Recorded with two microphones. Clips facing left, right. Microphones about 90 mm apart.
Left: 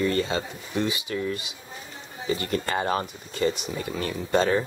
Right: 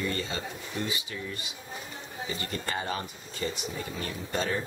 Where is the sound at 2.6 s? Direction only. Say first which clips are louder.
Left 5 dB; 60° left (ahead or behind).